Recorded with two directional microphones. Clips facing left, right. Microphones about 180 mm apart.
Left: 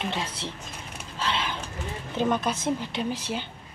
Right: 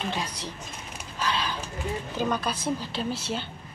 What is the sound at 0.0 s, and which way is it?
Speech, 25° left (ahead or behind).